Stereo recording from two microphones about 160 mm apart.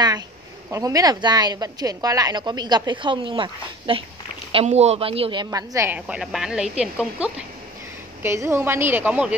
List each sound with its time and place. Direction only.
0.7 s a woman's voice: 20° right (ahead or behind)
5.9 s a woman's voice: 5° right (ahead or behind)